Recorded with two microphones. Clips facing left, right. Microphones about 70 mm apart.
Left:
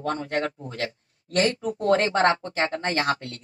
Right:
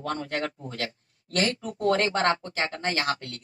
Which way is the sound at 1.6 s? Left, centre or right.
Left.